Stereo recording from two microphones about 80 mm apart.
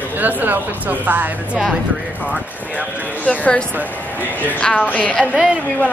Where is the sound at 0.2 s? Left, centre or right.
Right.